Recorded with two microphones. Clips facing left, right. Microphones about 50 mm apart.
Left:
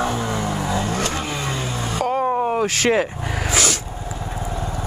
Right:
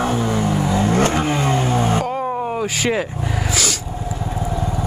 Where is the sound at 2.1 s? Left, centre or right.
Centre.